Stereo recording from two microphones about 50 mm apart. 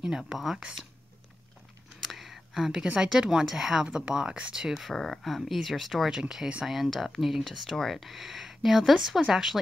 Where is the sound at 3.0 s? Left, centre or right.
Centre.